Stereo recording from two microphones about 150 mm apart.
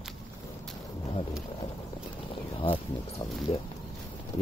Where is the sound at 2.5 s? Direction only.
35° left (ahead or behind).